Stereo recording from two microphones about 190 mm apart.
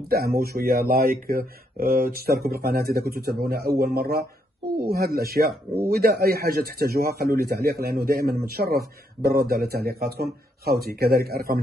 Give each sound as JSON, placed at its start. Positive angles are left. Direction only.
{"t": 0.1, "sound": "speech", "side_deg": -55}